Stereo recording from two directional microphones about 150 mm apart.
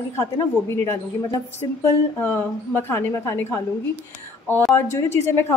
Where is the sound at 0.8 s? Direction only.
15° left (ahead or behind).